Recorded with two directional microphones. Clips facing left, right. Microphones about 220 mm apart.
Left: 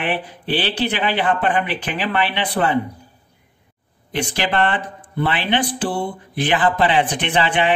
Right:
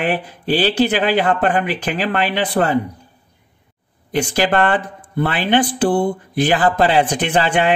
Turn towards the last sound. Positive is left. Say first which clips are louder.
# right 2 dB
turn(degrees=-45)  # may be behind; listen again after turning